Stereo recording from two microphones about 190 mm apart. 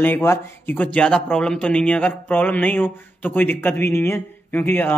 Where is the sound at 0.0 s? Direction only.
10° left (ahead or behind).